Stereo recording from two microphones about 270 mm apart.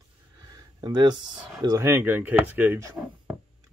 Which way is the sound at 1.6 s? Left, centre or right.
Centre.